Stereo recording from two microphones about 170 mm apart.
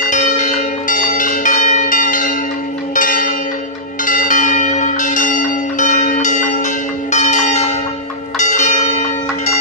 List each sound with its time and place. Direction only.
0.1 s change ringing: 45° left (ahead or behind)
2.9 s church bell: 55° left (ahead or behind)